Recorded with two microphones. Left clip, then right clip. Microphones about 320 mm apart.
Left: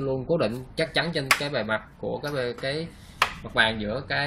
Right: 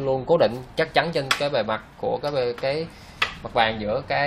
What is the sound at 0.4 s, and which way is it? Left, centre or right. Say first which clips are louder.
Speech: right 5 dB; centre.